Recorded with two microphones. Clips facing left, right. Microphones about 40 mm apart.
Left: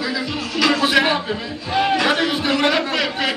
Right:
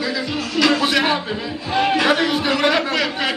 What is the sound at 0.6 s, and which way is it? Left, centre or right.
Music, centre.